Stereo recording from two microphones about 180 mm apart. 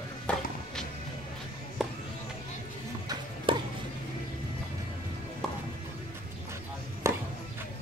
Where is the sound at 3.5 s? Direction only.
30° right (ahead or behind).